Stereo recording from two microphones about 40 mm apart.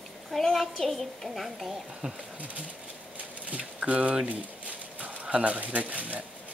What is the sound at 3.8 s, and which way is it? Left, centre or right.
Speech, right.